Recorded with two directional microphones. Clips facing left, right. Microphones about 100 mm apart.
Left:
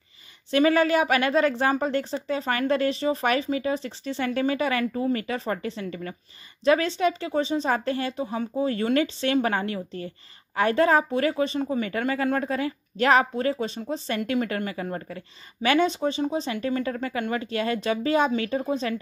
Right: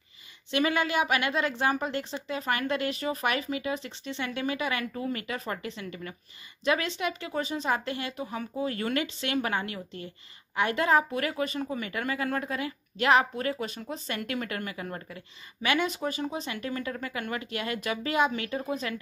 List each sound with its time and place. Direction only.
0.5 s a woman's voice: 35° left (ahead or behind)